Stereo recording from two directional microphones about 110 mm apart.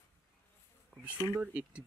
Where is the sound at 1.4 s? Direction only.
10° right (ahead or behind).